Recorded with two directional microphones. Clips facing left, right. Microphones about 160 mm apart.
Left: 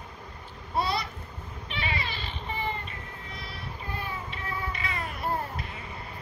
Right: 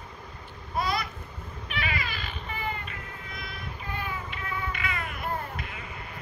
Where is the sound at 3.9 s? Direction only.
35° left (ahead or behind).